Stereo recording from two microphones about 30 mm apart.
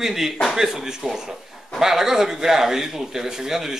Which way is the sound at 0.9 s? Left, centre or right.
Right.